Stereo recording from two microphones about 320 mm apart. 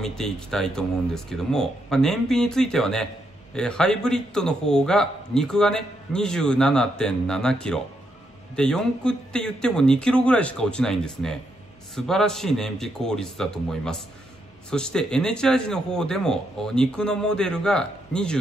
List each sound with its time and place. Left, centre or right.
0.0 s a man's voice: centre